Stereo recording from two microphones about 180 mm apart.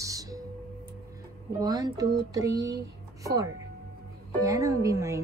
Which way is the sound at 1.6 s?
20° right (ahead or behind).